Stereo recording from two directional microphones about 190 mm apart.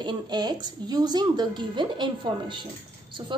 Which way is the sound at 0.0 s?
25° right (ahead or behind).